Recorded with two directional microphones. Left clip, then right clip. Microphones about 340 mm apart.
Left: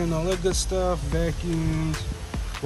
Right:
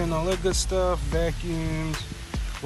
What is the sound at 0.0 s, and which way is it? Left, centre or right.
Speech, centre.